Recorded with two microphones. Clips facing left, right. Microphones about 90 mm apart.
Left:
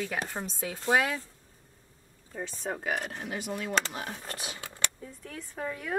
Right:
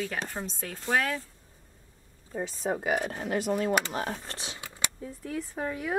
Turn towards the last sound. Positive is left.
turn(degrees=-10)  # may be behind; listen again after turning